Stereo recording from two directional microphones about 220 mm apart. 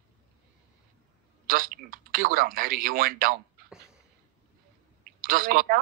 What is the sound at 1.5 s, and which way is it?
Speech, 40° right (ahead or behind).